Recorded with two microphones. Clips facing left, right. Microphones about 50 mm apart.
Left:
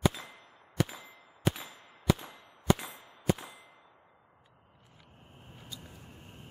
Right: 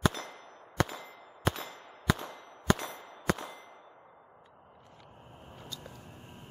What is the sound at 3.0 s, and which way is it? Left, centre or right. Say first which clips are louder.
Clang: left 1 dB; right.